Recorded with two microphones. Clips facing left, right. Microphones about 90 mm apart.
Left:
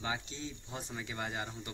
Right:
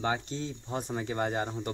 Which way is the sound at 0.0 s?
50° right (ahead or behind).